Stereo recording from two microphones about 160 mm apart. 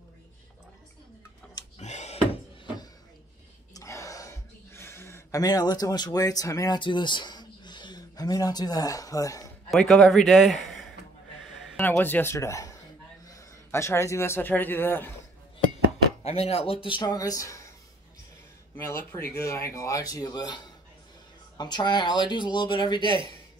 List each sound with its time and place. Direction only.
1.8 s a sound: 45° left (ahead or behind)
3.7 s gasp: 20° left (ahead or behind)
9.7 s a man's voice: centre (ahead or behind)
11.7 s a man's voice: 15° left (ahead or behind)
16.3 s speech: 40° left (ahead or behind); by 17.6 s 20° left (ahead or behind)
18.9 s speech: 15° left (ahead or behind)